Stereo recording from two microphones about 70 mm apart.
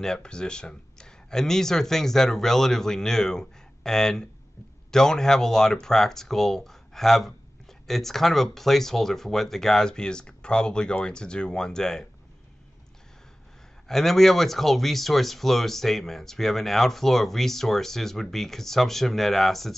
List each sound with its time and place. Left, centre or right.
0.0 s speech: centre
13.8 s speech: centre